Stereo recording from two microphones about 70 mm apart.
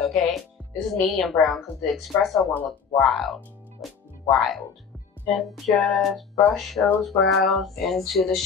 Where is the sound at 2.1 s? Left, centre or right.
Left.